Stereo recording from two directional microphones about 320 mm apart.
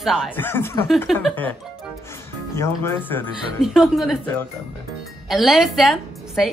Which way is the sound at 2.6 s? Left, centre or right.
Centre.